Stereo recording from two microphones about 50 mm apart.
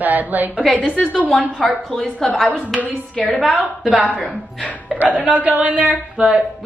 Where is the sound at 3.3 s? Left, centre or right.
Centre.